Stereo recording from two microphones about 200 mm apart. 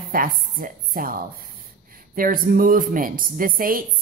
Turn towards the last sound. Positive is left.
turn(degrees=-45)  # may be behind; listen again after turning